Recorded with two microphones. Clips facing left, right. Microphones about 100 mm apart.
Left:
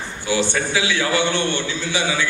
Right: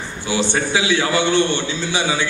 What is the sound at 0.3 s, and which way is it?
A man's voice, 20° right (ahead or behind).